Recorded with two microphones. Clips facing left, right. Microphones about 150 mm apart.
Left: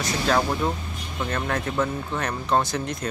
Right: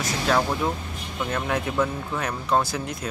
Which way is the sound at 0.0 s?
Centre (ahead or behind).